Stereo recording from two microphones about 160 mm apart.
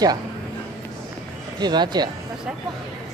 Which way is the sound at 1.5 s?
25° right (ahead or behind).